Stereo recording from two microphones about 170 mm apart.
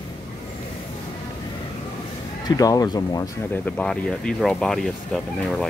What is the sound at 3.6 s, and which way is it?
Speech, 5° left (ahead or behind).